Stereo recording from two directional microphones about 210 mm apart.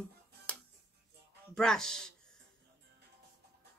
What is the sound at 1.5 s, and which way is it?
Speech, centre (ahead or behind).